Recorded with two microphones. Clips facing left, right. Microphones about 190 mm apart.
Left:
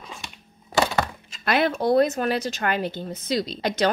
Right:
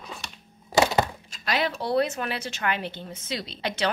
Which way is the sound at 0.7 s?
20° right (ahead or behind).